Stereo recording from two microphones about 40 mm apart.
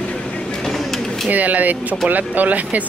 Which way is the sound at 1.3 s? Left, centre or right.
Right.